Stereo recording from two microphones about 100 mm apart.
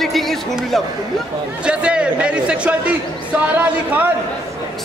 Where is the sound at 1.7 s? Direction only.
10° right (ahead or behind).